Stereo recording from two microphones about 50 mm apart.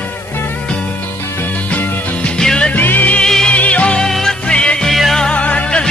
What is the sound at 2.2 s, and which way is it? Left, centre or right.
Music, centre.